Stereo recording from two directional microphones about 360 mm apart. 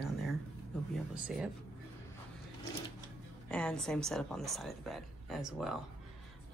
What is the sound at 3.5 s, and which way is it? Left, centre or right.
A woman's voice, centre.